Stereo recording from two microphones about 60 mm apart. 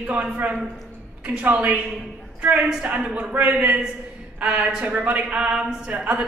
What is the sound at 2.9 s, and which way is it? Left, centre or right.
A man's voice, right.